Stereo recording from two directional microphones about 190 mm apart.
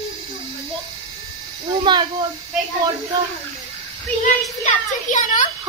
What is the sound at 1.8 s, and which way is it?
Speech, 25° right (ahead or behind).